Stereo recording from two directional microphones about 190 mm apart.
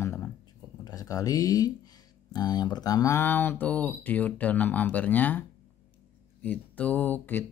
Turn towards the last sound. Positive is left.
turn(degrees=10)  # may be behind; listen again after turning